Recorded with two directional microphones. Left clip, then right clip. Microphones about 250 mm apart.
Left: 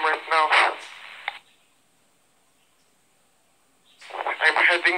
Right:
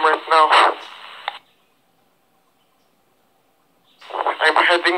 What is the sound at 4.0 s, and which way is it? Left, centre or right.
Radio, right.